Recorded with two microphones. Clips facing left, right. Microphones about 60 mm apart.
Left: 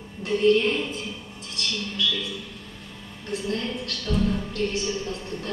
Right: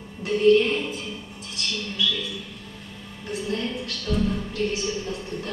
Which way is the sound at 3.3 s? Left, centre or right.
Centre.